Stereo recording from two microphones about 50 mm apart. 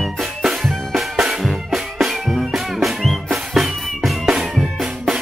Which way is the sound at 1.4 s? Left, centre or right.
Centre.